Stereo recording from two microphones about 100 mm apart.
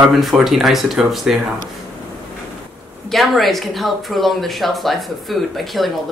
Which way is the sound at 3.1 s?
Centre (ahead or behind).